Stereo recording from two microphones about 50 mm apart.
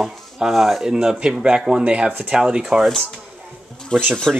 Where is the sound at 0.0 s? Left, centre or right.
Centre.